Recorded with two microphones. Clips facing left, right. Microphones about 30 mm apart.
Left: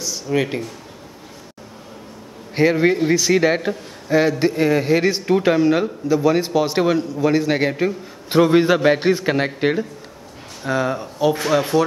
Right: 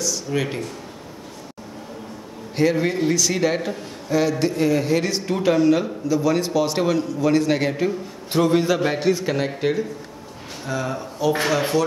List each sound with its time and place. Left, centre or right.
0.0 s speech: centre
2.5 s a man's voice: centre